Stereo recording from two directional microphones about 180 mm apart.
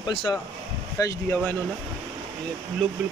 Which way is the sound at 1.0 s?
20° left (ahead or behind).